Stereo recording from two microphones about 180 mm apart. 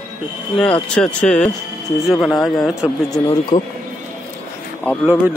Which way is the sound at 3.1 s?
25° left (ahead or behind).